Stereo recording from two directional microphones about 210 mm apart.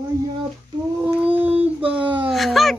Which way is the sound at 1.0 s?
5° right (ahead or behind).